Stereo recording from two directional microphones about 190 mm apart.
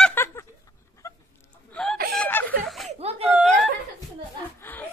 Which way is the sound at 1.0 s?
15° left (ahead or behind).